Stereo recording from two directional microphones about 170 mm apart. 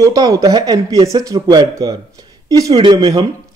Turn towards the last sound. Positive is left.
turn(degrees=-25)  # may be behind; listen again after turning